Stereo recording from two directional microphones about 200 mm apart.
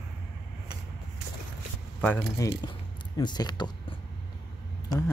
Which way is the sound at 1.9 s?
10° left (ahead or behind).